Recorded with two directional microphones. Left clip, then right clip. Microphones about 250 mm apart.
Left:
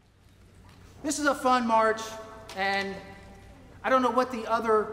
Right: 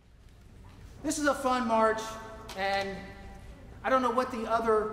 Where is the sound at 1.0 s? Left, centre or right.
Left.